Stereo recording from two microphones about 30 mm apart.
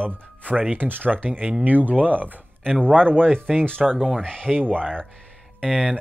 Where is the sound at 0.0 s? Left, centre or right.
Right.